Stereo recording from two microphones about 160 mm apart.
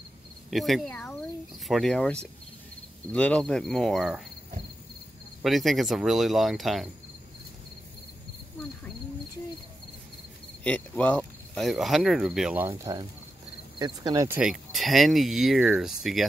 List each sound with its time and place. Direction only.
0.5 s speech: centre (ahead or behind)
5.4 s speech: centre (ahead or behind)
10.6 s speech: 10° left (ahead or behind)
12.6 s cricket: 20° right (ahead or behind)
14.4 s speech: centre (ahead or behind)